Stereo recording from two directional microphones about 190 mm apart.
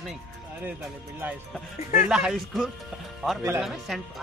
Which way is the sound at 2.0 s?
5° right (ahead or behind).